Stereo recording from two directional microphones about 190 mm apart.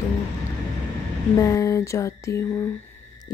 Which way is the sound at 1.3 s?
15° left (ahead or behind).